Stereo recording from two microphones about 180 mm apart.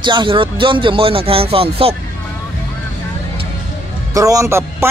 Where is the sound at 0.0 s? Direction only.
25° right (ahead or behind).